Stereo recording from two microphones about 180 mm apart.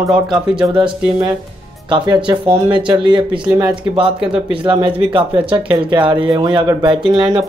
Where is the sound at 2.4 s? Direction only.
25° right (ahead or behind).